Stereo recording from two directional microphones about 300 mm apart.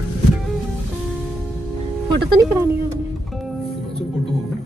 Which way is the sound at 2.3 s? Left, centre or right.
Centre.